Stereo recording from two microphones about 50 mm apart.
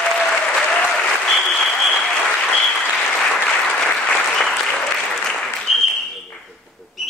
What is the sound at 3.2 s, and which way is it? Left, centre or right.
Applause, centre.